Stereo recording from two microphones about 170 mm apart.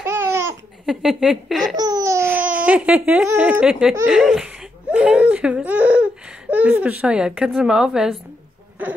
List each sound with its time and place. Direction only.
0.0 s laughter: 15° right (ahead or behind)
0.8 s speech: centre (ahead or behind)
1.8 s laughter: 20° right (ahead or behind)
2.3 s speech: 10° right (ahead or behind)